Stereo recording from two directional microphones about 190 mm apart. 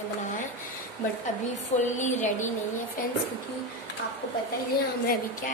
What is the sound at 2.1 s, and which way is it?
Speech, 40° left (ahead or behind).